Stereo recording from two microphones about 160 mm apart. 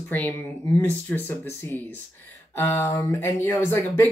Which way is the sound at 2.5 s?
15° left (ahead or behind).